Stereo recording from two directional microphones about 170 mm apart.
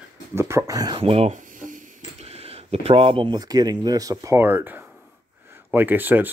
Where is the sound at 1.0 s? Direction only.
35° right (ahead or behind).